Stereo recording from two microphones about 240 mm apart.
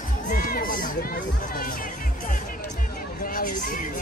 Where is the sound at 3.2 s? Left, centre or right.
Left.